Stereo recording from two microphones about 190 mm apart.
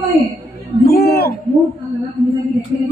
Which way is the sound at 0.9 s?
55° left (ahead or behind).